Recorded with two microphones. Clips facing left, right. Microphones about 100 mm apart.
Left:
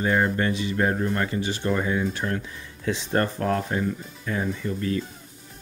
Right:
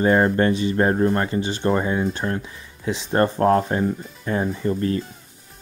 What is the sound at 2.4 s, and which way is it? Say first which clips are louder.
Speech: right 1 dB; 20° right (ahead or behind).